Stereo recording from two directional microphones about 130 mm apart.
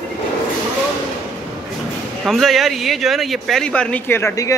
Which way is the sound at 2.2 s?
Centre (ahead or behind).